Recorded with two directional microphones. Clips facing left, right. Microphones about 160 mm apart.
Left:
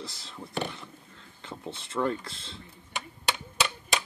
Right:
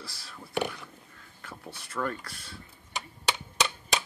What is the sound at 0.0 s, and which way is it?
Speech, 20° left (ahead or behind).